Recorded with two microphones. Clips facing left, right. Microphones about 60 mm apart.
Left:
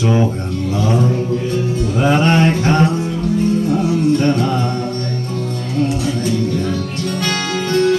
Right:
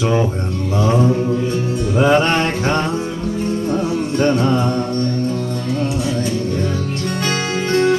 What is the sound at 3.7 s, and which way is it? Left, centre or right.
Music, right.